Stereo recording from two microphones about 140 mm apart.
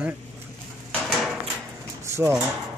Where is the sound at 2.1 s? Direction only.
20° right (ahead or behind).